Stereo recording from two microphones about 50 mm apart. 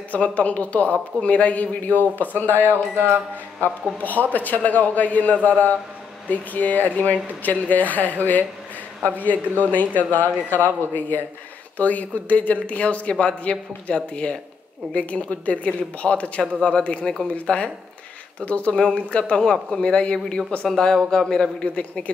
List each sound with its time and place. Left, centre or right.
0.1 s a man's voice: left
4.0 s a man's voice: left
20.6 s a man's voice: centre
21.7 s speech: left